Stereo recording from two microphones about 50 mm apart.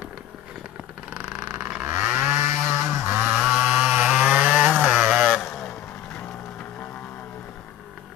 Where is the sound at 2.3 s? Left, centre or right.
Right.